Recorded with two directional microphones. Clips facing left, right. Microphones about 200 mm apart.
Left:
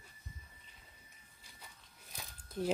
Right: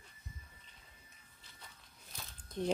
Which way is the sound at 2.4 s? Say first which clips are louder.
Even; 5° left (ahead or behind).